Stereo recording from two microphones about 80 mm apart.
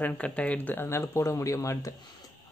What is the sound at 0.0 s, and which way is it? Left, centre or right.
Speech, centre.